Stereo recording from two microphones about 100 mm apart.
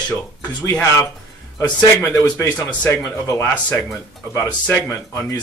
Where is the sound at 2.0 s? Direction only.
20° left (ahead or behind).